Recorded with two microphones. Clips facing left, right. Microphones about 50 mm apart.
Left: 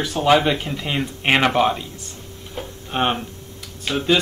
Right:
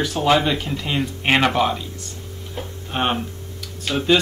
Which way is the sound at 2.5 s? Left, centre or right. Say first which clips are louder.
Left 2 dB; centre.